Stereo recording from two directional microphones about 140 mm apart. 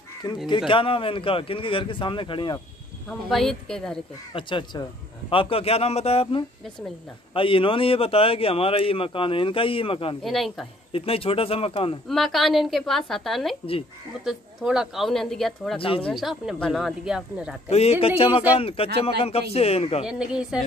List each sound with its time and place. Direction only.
0.2 s a man's voice: 35° left (ahead or behind)
3.1 s speech: centre (ahead or behind)
4.3 s a man's voice: 35° left (ahead or behind)
10.2 s speech: centre (ahead or behind)
10.9 s speech: 40° left (ahead or behind)
12.1 s speech: centre (ahead or behind)
15.8 s a man's voice: 40° left (ahead or behind)
16.1 s speech: centre (ahead or behind)
17.6 s speech: 45° left (ahead or behind)
20.1 s speech: 5° right (ahead or behind)